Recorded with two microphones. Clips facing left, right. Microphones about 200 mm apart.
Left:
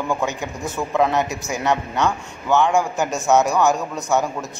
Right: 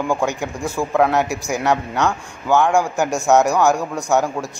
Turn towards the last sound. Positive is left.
turn(degrees=-10)  # may be behind; listen again after turning